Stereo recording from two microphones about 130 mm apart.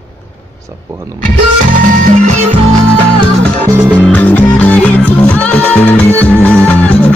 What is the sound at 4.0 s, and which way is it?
Music, 15° left (ahead or behind).